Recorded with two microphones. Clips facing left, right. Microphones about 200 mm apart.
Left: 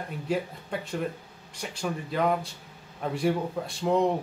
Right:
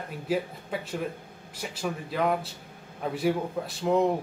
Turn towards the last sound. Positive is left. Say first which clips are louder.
# even
turn(degrees=-5)  # may be behind; listen again after turning